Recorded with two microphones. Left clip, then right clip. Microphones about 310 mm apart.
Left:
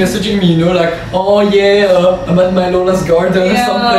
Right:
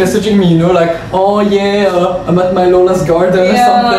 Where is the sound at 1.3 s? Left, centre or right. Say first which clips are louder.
Left 3 dB; centre.